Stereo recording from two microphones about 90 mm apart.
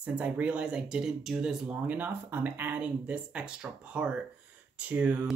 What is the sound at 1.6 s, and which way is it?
Speech, 20° right (ahead or behind).